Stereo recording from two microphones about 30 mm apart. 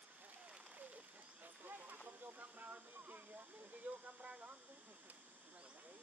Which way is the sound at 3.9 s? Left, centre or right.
Right.